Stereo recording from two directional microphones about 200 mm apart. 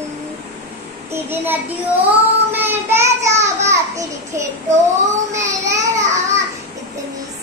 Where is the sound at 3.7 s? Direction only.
15° right (ahead or behind).